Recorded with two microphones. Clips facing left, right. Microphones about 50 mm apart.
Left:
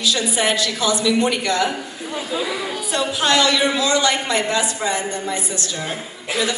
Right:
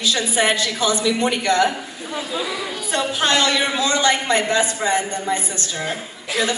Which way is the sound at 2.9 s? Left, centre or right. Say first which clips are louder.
Left 1 dB; right.